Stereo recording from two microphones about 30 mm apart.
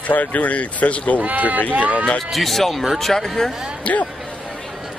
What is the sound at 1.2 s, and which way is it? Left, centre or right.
Speech, right.